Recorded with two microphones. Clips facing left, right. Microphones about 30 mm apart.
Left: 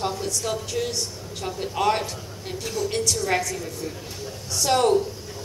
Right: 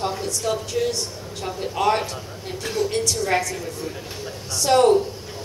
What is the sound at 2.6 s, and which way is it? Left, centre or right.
Speech, right.